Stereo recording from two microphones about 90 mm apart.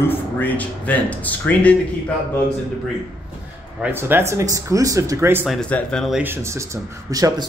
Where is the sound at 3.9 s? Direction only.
25° right (ahead or behind).